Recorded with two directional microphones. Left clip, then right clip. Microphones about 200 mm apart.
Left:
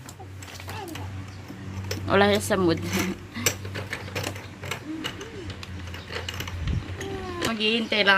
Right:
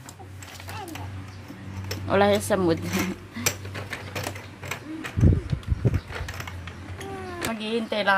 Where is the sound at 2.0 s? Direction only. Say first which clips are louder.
Even; 10° right (ahead or behind).